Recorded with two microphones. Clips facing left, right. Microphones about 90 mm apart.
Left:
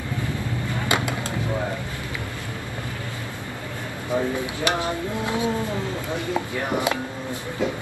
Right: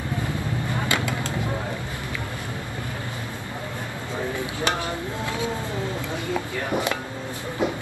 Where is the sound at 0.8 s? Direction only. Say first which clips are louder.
Left 3 dB; 20° left (ahead or behind).